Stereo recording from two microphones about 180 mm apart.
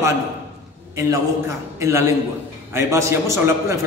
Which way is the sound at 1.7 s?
15° right (ahead or behind).